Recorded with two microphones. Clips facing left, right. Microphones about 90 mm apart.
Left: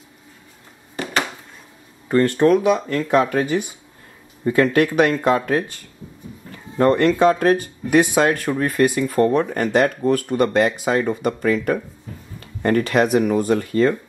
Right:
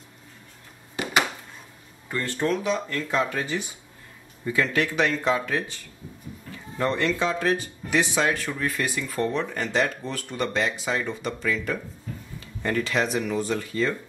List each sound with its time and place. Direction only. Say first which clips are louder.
2.2 s speech: left 9 dB; 60° left (ahead or behind)
6.8 s speech: left 10 dB; 50° left (ahead or behind)